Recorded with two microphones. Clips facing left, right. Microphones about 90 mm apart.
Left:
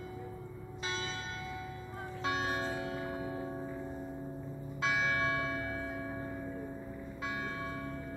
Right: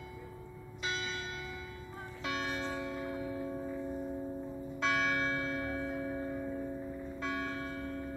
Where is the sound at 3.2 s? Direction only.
25° left (ahead or behind).